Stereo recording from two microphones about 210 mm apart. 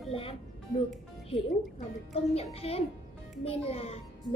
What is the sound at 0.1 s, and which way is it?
Speech, 25° left (ahead or behind).